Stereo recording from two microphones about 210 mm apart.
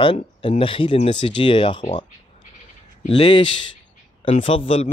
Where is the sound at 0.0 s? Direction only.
25° left (ahead or behind).